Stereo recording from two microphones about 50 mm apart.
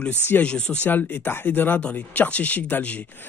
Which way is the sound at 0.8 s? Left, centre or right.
Left.